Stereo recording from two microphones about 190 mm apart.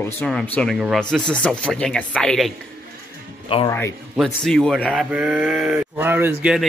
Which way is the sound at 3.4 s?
30° left (ahead or behind).